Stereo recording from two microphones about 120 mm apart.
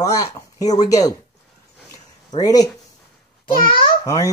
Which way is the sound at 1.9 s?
30° left (ahead or behind).